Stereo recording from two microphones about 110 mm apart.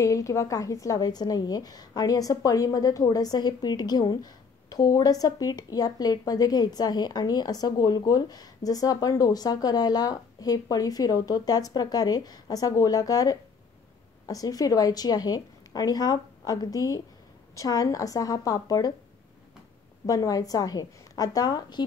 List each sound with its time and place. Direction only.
0.0 s a woman's voice: 30° left (ahead or behind)
20.1 s a woman's voice: 30° left (ahead or behind)